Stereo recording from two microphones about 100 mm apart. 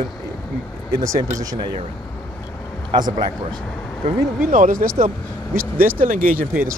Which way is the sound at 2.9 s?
60° right (ahead or behind).